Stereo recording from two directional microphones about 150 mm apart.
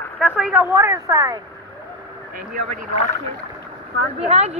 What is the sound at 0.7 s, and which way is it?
Speech, 20° right (ahead or behind).